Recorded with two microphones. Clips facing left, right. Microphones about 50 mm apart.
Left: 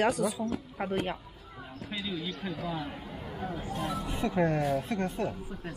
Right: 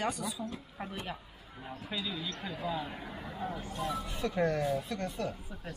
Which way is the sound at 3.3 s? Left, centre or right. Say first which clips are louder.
Left 1 dB; left.